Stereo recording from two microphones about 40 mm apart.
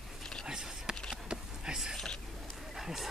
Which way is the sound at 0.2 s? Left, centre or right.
Centre.